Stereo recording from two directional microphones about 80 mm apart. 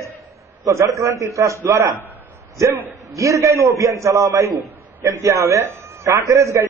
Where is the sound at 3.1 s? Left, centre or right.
Right.